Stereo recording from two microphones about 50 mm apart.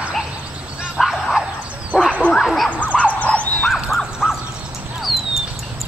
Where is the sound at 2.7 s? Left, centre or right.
Left.